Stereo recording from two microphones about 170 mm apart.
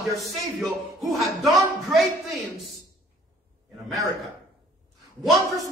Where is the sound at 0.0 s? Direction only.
Centre (ahead or behind).